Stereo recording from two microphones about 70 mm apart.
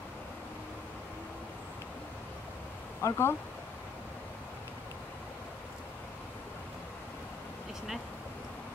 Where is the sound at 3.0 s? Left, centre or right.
Left.